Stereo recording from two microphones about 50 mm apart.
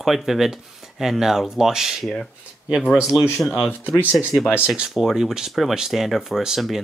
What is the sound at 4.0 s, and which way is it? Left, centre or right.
Speech, right.